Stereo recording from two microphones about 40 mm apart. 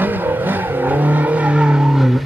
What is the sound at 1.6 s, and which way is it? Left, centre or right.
Vehicle, centre.